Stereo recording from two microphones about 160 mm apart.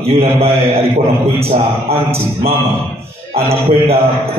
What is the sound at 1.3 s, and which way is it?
Speech, 40° right (ahead or behind).